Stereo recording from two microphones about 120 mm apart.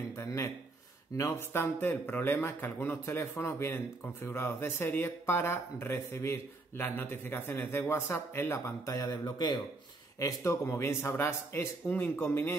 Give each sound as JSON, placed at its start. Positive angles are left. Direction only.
{"t": 0.1, "sound": "a man's voice", "side_deg": 25}